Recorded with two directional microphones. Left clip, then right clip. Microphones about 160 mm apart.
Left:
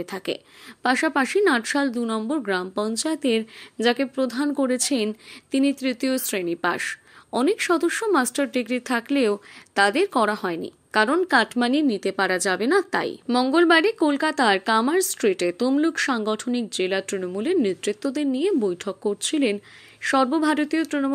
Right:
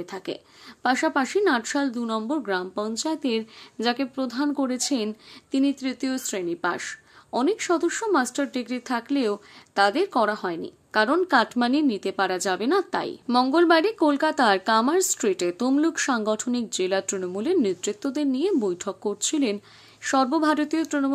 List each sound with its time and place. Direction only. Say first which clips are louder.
0.0 s a woman's voice: left 4 dB; 20° left (ahead or behind); by 21.1 s 5° left (ahead or behind)